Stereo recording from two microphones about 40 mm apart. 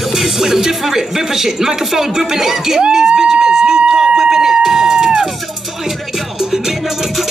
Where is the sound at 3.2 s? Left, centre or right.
Right.